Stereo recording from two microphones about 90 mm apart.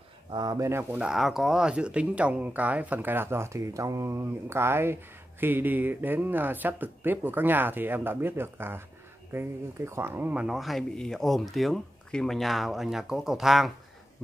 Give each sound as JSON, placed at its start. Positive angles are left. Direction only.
{"t": 0.3, "sound": "speech", "side_deg": -55}
{"t": 0.6, "sound": "speech", "side_deg": -30}
{"t": 0.9, "sound": "speech", "side_deg": -5}
{"t": 10.3, "sound": "speech", "side_deg": -5}